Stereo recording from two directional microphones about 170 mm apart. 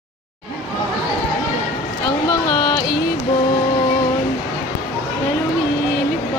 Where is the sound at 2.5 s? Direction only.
25° left (ahead or behind).